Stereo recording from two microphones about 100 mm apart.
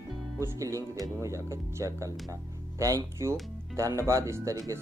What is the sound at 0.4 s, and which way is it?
Speech, 30° right (ahead or behind).